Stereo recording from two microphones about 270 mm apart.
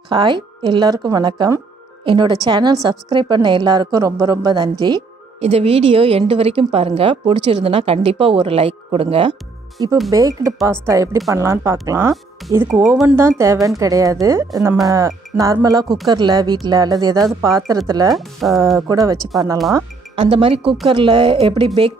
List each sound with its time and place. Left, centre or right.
0.1 s a woman's voice: centre
18.1 s speech: centre
18.8 s a woman's voice: centre